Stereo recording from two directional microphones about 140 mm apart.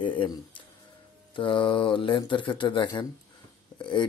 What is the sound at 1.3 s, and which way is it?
Speech, 35° left (ahead or behind).